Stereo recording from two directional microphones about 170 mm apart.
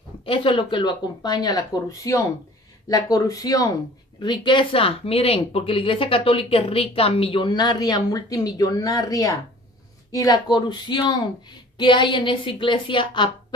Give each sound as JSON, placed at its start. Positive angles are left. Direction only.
{"t": 0.2, "sound": "a woman's voice", "side_deg": 30}